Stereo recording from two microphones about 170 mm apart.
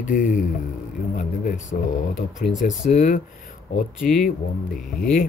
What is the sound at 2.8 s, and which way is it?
Speech, 45° left (ahead or behind).